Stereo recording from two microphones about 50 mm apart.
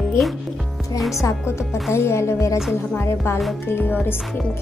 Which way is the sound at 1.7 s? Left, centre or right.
Left.